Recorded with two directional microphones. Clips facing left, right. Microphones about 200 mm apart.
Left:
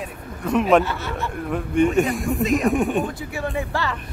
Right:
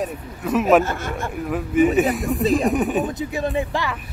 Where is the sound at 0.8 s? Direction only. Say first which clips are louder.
Right 1 dB; 50° right (ahead or behind).